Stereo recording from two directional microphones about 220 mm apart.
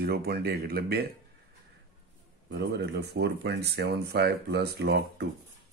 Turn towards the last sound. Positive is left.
turn(degrees=-45)  # may be behind; listen again after turning